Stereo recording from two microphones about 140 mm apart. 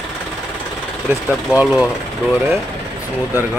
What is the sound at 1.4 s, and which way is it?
Speech, 5° right (ahead or behind).